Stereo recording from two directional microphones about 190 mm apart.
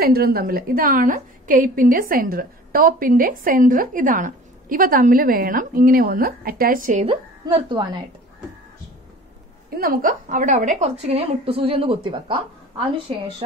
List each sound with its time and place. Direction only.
0.0 s a woman's voice: 50° right (ahead or behind); by 8.0 s 20° right (ahead or behind)
9.8 s a woman's voice: 45° right (ahead or behind); by 12.4 s 30° right (ahead or behind)